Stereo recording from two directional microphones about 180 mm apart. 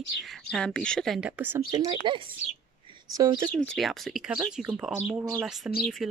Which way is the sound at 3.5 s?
5° left (ahead or behind).